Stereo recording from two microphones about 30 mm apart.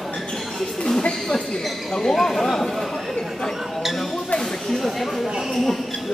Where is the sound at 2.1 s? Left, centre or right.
Centre.